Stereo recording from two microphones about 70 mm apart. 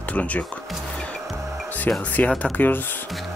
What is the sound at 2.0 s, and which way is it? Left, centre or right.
Speech, left.